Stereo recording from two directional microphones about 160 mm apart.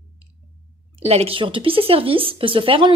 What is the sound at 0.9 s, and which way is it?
A woman's voice, 40° right (ahead or behind).